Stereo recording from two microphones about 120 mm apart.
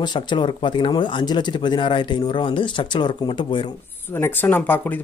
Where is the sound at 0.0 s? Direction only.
40° left (ahead or behind).